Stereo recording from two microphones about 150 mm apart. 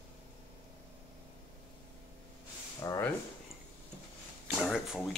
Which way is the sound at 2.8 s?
20° left (ahead or behind).